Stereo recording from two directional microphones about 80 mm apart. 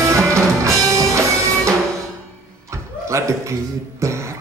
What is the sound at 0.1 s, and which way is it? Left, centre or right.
Music, right.